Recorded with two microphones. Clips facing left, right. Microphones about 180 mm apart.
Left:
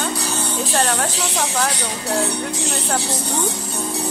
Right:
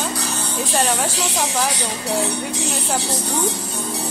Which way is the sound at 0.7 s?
10° right (ahead or behind).